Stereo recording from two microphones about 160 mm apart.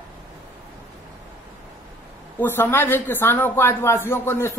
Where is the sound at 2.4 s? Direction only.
15° left (ahead or behind).